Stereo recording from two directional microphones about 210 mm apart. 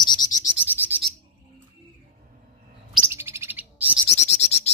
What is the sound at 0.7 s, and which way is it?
Bird, 10° right (ahead or behind).